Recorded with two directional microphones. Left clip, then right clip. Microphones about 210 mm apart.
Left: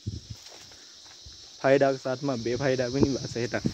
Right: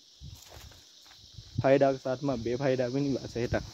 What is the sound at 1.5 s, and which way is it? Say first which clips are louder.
Speech: left 2 dB; centre (ahead or behind).